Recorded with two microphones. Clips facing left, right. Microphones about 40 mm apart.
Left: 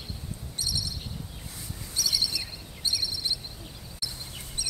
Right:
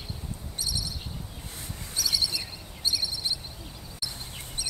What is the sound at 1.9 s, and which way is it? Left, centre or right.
Bird, centre.